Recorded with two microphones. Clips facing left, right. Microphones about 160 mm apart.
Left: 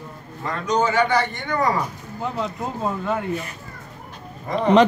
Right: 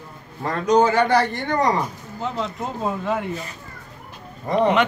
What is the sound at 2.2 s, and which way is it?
Speech, 5° left (ahead or behind).